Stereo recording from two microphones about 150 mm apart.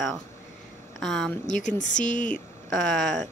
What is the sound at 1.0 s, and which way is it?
Speech, centre (ahead or behind).